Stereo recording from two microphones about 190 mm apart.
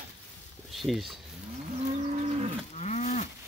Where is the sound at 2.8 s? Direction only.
40° left (ahead or behind).